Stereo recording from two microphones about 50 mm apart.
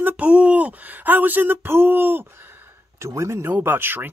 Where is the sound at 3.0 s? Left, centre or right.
Right.